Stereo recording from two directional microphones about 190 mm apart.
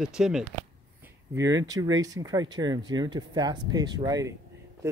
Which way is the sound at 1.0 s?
15° right (ahead or behind).